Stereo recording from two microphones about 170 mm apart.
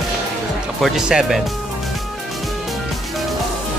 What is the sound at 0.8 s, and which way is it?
Speech, centre (ahead or behind).